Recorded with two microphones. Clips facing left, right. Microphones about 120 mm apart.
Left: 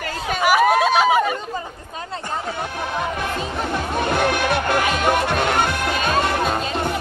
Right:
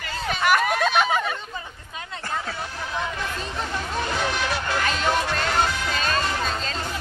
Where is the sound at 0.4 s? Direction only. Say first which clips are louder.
Left 5 dB; 5° left (ahead or behind).